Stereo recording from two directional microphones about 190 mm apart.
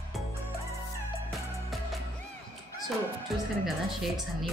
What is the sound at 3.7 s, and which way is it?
Speech, centre (ahead or behind).